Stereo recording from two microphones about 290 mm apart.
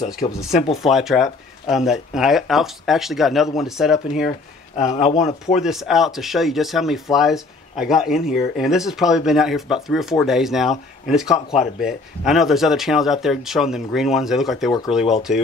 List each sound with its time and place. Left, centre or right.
0.2 s speech: centre
0.8 s speech: centre
4.7 s speech: left
5.2 s speech: centre